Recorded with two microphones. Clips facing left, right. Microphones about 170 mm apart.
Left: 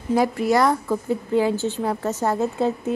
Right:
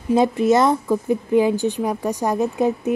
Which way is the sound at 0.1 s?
20° right (ahead or behind).